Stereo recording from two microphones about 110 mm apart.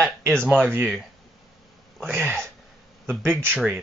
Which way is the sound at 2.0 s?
5° left (ahead or behind).